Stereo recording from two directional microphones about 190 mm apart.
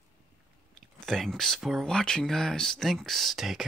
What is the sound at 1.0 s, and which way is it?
Speech, centre (ahead or behind).